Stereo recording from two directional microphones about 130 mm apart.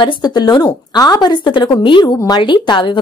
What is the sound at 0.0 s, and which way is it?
A woman's voice, 30° left (ahead or behind).